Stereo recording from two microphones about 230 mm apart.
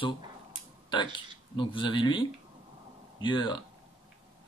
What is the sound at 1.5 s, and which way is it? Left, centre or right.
Speech, left.